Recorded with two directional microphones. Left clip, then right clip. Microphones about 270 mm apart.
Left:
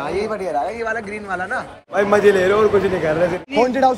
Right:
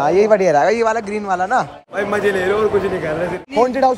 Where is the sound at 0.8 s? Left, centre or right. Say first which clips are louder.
Right 6 dB; centre.